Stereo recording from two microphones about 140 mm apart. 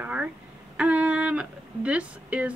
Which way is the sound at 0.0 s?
10° right (ahead or behind).